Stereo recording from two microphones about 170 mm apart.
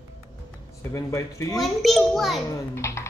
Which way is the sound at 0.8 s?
20° left (ahead or behind).